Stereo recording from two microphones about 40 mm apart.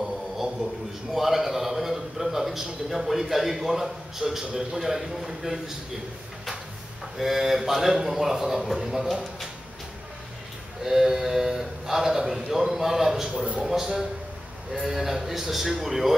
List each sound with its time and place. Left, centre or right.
0.6 s a sound: centre
1.1 s a man's voice: centre
7.2 s a man's voice: centre
10.8 s a man's voice: centre